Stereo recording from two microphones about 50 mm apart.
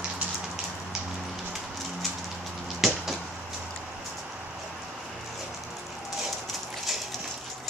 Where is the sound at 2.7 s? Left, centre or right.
Centre.